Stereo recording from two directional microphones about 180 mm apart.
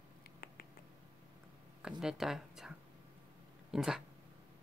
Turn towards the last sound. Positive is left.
turn(degrees=0)  # may be behind; listen again after turning